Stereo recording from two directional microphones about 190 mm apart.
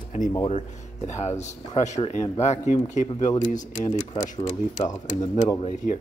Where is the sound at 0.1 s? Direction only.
40° left (ahead or behind).